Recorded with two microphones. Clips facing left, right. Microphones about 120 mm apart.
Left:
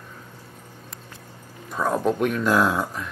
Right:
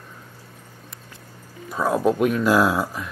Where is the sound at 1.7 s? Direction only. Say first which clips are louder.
Right 2 dB; 5° right (ahead or behind).